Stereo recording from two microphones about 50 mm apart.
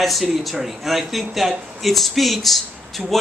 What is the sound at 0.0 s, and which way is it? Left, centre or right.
Speech, centre.